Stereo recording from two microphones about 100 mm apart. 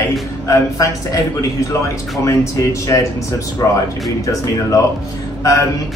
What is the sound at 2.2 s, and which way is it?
Speech, 30° left (ahead or behind).